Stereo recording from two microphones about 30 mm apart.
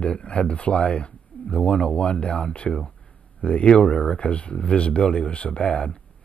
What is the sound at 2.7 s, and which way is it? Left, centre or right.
Speech, left.